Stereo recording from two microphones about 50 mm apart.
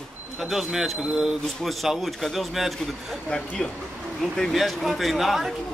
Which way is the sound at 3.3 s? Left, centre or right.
Centre.